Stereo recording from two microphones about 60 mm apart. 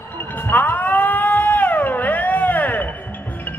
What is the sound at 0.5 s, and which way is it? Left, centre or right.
Cat, left.